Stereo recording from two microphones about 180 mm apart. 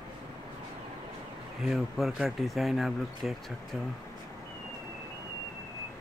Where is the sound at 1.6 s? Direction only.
Centre (ahead or behind).